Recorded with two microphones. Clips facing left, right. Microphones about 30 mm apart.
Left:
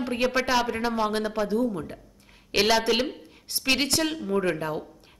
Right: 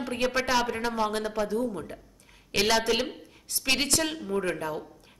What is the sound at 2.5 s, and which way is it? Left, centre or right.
Speech, centre.